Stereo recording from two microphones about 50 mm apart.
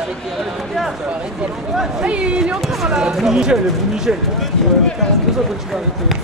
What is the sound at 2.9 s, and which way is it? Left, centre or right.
Speech, centre.